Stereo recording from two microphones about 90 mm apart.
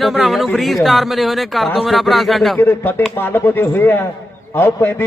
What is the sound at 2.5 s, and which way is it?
A man's voice, 20° left (ahead or behind).